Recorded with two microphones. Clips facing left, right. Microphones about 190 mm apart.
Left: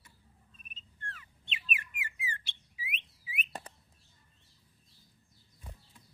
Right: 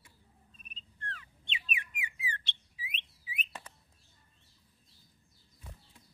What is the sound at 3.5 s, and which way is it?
Bird, 35° left (ahead or behind).